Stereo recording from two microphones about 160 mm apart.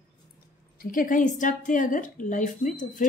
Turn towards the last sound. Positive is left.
turn(degrees=55)  # may be behind; listen again after turning